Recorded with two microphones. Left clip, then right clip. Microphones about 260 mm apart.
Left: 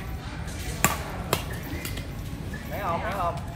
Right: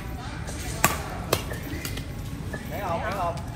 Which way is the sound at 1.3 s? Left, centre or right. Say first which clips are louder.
Right 2 dB; centre.